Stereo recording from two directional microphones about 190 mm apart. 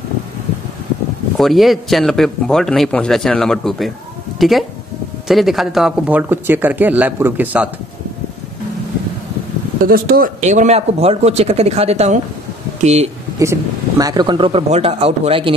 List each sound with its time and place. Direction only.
1.4 s a man's voice: centre (ahead or behind)
9.8 s speech: 50° right (ahead or behind)
13.4 s speech: 15° right (ahead or behind)